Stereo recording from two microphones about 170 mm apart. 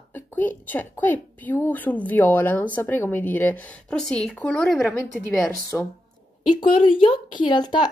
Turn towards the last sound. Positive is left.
turn(degrees=25)  # may be behind; listen again after turning